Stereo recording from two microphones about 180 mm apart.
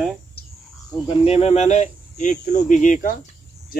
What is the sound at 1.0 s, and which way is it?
Speech, 35° left (ahead or behind).